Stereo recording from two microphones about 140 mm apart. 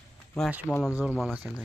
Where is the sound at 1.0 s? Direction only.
5° right (ahead or behind).